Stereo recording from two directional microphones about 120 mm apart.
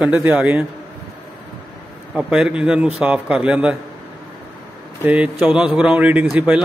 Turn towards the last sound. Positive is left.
turn(degrees=-10)  # may be behind; listen again after turning